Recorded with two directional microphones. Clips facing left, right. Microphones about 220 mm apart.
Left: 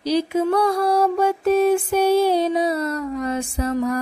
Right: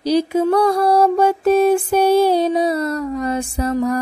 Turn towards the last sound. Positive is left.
turn(degrees=-35)  # may be behind; listen again after turning